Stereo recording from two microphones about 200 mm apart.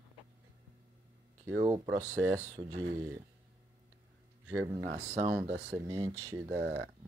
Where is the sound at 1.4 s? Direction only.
15° right (ahead or behind).